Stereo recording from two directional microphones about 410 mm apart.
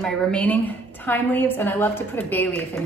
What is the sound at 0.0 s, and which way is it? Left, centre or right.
Speech, centre.